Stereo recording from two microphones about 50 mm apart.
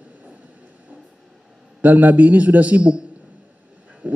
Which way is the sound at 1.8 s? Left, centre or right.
Right.